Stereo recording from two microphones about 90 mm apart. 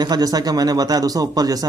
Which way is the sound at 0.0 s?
45° right (ahead or behind).